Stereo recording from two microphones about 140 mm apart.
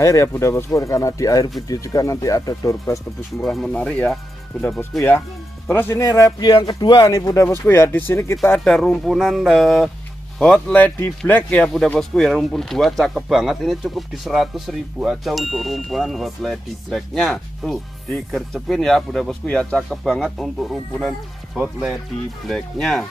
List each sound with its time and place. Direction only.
0.0 s speech: 20° left (ahead or behind)
3.3 s speech: centre (ahead or behind)
5.7 s speech: 15° left (ahead or behind)
8.5 s speech: 5° left (ahead or behind)
10.4 s speech: 10° left (ahead or behind)